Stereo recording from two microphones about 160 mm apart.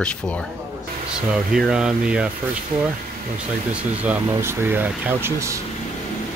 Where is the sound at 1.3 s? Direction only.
5° right (ahead or behind).